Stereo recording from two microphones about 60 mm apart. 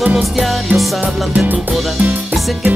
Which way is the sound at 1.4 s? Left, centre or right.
Right.